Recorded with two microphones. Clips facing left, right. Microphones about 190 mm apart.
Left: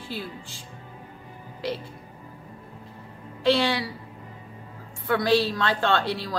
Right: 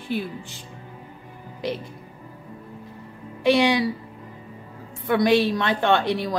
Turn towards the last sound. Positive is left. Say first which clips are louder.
# right 4 dB
turn(degrees=-20)  # may be behind; listen again after turning